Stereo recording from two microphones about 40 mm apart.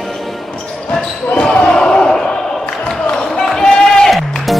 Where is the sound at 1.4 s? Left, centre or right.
Left.